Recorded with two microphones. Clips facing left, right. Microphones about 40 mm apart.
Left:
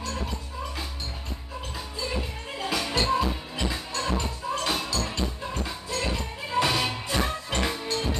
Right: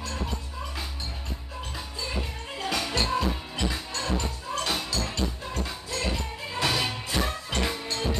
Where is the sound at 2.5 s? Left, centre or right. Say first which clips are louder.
Left 1 dB; centre.